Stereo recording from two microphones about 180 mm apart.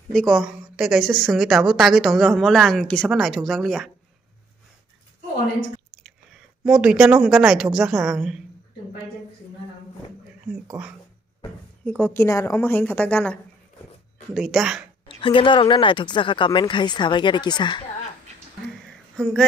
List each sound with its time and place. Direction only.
0.1 s a woman's voice: centre (ahead or behind)
6.6 s a woman's voice: 5° right (ahead or behind)
11.8 s a woman's voice: 10° left (ahead or behind)
15.1 s speech: 25° left (ahead or behind)
19.2 s a woman's voice: 5° left (ahead or behind)